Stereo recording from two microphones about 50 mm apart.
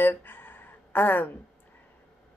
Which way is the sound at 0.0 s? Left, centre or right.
Left.